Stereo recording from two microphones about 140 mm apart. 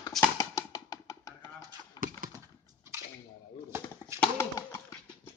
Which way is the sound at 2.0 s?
25° left (ahead or behind).